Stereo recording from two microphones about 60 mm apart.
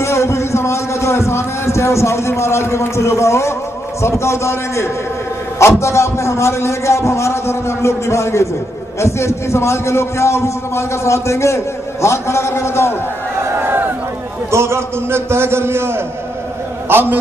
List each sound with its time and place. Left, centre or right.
0.0 s a sound: left
4.0 s a man's voice: left
13.5 s crowd: right
14.5 s a man's voice: right
16.9 s a man's voice: right